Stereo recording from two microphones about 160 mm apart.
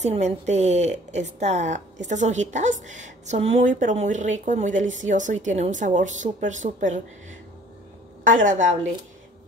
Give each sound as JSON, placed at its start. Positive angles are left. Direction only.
{"t": 0.0, "sound": "a woman's voice", "side_deg": -45}